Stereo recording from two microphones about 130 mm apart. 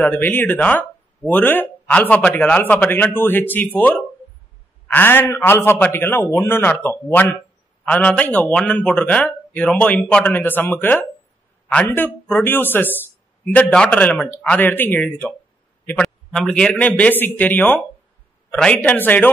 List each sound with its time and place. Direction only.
0.0 s a man's voice: 15° left (ahead or behind)